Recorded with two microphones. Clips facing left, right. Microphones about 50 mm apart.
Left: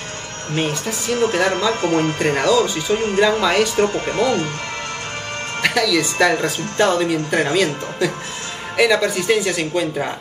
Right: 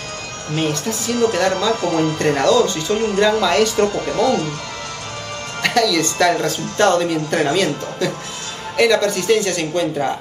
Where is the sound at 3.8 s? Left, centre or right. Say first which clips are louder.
Right 1 dB; left.